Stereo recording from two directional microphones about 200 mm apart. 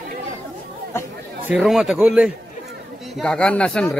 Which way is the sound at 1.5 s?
Centre (ahead or behind).